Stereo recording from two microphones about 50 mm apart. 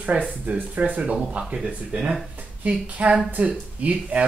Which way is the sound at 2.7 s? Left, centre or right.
Right.